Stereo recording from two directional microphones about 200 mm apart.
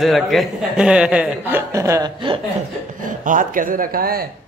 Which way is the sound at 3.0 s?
40° right (ahead or behind).